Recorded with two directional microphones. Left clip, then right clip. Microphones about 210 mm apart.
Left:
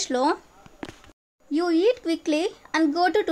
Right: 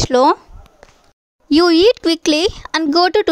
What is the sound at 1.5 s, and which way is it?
A woman's voice, 45° right (ahead or behind).